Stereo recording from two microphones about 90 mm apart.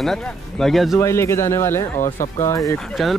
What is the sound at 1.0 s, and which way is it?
Speech, 30° left (ahead or behind).